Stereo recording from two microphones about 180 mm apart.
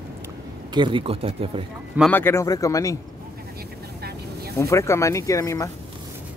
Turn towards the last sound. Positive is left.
turn(degrees=15)  # may be behind; listen again after turning